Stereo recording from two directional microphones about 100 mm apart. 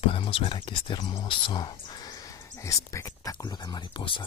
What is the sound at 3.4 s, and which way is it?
Speech, 45° left (ahead or behind).